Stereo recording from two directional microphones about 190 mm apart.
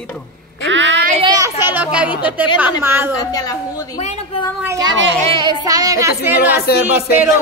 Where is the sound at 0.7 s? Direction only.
75° right (ahead or behind).